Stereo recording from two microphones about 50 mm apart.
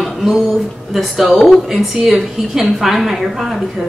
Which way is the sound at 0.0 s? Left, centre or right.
Centre.